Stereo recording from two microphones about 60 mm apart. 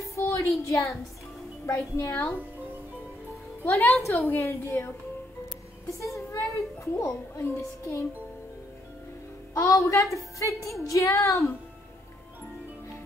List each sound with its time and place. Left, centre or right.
0.0 s a sound: left
0.7 s a child's voice: left
3.7 s a child's voice: left
5.9 s a woman's voice: left
9.5 s speech: left